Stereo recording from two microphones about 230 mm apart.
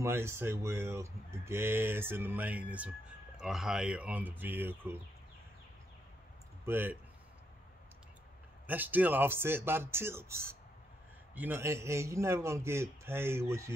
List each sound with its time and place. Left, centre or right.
0.0 s speech: centre
6.6 s speech: centre
8.6 s speech: centre